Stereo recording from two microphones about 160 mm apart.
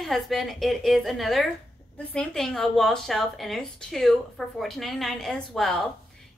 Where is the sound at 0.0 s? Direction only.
Centre (ahead or behind).